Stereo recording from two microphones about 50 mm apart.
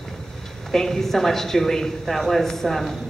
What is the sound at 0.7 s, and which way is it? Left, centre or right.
A woman's voice, centre.